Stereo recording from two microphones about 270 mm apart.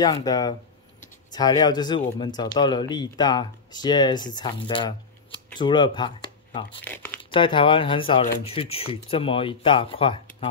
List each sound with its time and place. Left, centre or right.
0.0 s speech: centre
6.8 s speech: centre
7.2 s speech: centre